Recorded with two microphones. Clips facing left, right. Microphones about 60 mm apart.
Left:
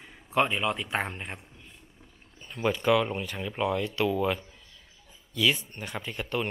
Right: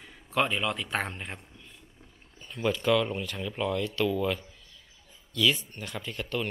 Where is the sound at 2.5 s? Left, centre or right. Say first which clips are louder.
Left 1 dB; centre.